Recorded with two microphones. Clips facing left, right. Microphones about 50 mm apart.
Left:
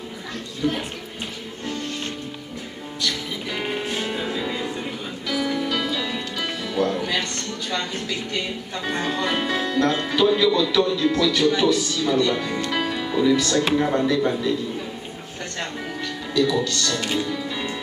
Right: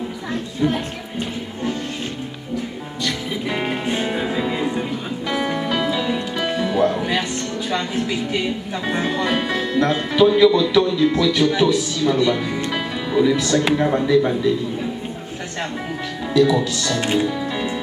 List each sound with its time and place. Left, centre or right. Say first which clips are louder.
0.6 s speech: right 4 dB; right
3.0 s music: right 3 dB; centre
5.3 s music: right 2 dB; right
8.1 s speech: right 5 dB; centre
16.3 s speech: right 5 dB; centre
17.0 s speech: right 5 dB; right